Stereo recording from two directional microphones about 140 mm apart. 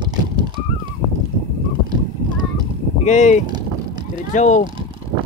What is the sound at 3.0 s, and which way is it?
Speech, 55° left (ahead or behind).